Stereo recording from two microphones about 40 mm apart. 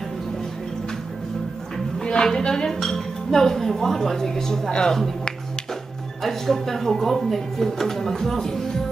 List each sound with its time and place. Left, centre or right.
2.0 s a sound: centre
2.2 s speech: centre
6.2 s speech: centre